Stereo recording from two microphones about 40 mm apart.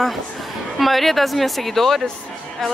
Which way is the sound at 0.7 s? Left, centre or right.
Centre.